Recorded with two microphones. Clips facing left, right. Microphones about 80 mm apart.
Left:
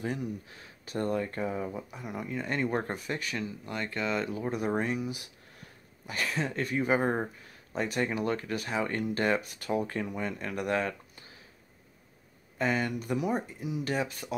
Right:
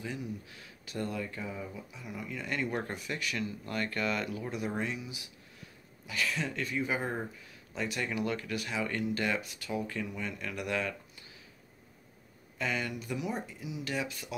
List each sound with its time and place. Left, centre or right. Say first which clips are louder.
0.0 s speech: left 5 dB; left
0.5 s speech: left 5 dB; left
2.2 s speech: left 3 dB; left
3.6 s speech: even; centre
4.5 s speech: left 7 dB; left
12.5 s speech: left 5 dB; left